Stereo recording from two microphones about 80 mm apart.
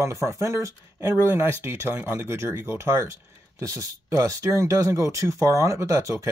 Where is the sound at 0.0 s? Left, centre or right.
Right.